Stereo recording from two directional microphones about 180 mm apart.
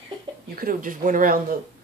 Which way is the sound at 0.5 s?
50° right (ahead or behind).